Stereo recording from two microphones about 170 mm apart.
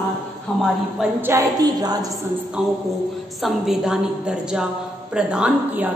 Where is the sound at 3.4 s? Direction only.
5° right (ahead or behind).